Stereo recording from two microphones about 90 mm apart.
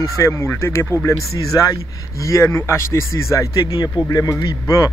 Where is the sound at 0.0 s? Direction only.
35° left (ahead or behind).